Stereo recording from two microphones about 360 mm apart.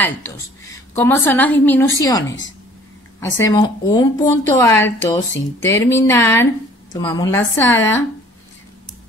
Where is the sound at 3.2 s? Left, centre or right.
Centre.